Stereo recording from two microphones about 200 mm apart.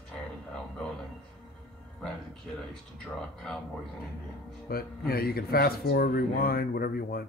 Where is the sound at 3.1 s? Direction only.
Centre (ahead or behind).